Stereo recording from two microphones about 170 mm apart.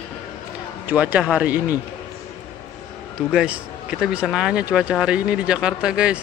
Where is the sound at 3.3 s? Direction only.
5° right (ahead or behind).